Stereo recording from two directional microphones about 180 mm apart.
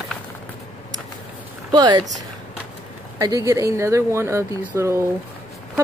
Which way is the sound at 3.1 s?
20° right (ahead or behind).